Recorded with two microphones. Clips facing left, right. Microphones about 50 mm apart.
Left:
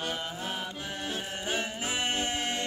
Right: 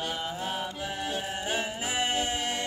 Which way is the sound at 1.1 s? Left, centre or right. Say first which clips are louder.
Right 1 dB; centre.